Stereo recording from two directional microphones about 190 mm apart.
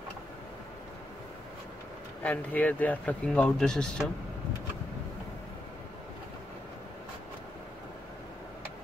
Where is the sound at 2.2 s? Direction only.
10° left (ahead or behind).